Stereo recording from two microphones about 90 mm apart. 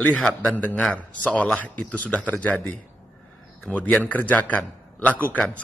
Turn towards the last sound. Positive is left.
turn(degrees=15)  # may be behind; listen again after turning